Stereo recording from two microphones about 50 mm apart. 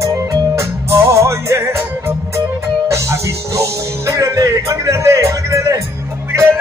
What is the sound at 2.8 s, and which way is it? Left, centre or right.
Music, right.